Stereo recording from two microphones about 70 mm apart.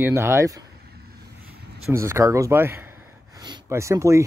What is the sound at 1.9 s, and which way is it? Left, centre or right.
Speech, right.